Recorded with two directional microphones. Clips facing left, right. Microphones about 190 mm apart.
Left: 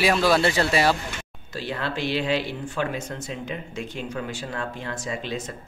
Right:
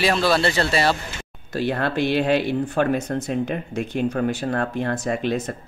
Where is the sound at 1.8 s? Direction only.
55° right (ahead or behind).